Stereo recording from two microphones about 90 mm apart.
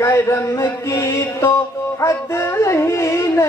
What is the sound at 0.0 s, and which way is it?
Music, 30° left (ahead or behind).